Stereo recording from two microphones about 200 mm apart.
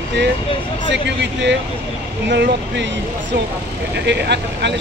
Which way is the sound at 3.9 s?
60° right (ahead or behind).